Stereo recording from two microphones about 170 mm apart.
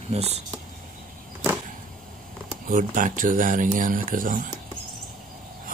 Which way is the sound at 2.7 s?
50° right (ahead or behind).